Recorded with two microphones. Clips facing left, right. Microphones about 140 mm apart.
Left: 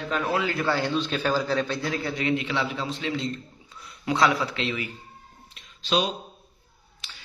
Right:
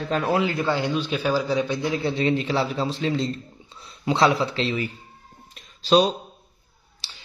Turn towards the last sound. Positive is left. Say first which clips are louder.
# even
turn(degrees=-30)  # may be behind; listen again after turning